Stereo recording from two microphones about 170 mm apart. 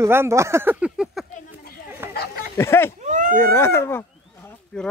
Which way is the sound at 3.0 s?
50° right (ahead or behind).